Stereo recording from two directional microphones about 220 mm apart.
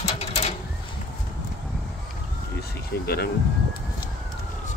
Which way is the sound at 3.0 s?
45° left (ahead or behind).